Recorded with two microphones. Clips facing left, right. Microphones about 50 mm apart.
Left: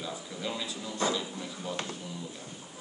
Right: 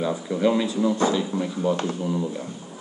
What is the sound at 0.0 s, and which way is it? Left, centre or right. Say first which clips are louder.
Speech: right 15 dB; right.